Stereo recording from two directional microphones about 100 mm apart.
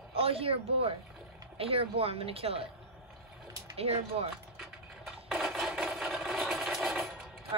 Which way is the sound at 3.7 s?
90° right.